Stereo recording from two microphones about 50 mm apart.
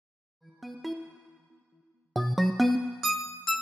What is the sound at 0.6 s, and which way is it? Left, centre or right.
Music, centre.